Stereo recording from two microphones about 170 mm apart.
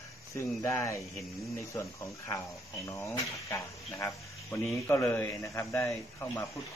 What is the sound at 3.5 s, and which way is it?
A man's voice, 15° left (ahead or behind).